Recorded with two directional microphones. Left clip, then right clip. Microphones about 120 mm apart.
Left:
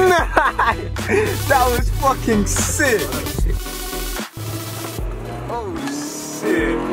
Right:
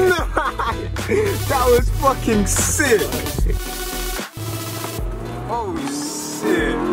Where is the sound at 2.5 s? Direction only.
Centre (ahead or behind).